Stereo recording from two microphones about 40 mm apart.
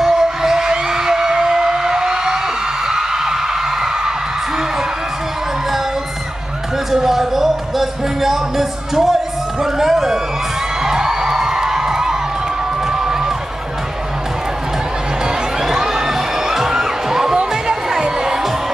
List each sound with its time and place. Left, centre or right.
0.0 s music: centre
2.9 s a sound: centre
6.9 s music: centre
9.6 s speech: centre
10.8 s music: centre
15.6 s crowd: centre
17.4 s music: centre